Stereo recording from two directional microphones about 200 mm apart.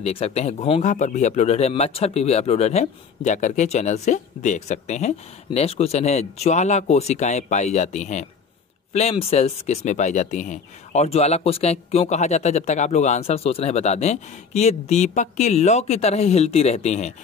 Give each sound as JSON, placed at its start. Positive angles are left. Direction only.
{"t": 0.0, "sound": "speech", "side_deg": 30}